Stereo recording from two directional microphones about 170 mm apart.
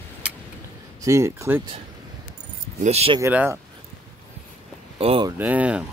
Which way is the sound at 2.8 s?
35° right (ahead or behind).